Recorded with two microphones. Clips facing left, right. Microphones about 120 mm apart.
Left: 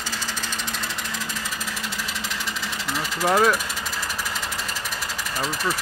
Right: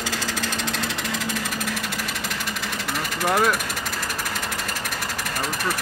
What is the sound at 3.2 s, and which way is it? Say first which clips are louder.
Speech: left 2 dB; centre (ahead or behind).